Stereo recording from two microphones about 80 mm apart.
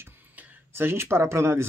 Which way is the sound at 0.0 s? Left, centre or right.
Right.